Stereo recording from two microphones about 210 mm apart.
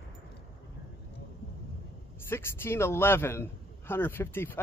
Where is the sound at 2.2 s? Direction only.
10° left (ahead or behind).